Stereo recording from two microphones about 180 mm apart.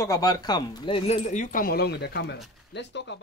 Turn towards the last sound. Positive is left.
turn(degrees=75)  # may be behind; listen again after turning